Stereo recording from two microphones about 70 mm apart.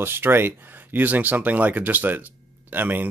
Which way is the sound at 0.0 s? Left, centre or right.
Right.